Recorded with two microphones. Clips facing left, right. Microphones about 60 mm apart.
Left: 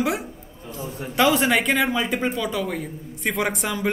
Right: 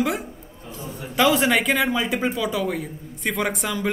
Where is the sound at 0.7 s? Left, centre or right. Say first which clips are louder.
Left 2 dB; left.